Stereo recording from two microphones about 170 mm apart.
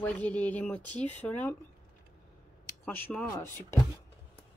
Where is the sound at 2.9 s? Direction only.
10° left (ahead or behind).